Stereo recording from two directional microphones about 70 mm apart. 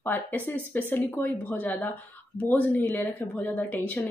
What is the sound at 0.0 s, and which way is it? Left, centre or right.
Speech, left.